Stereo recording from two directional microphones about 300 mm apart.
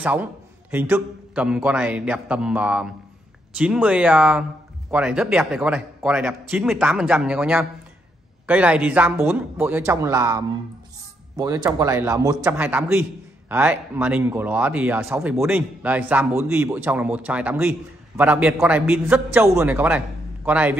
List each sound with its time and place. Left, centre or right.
0.0 s a man's voice: centre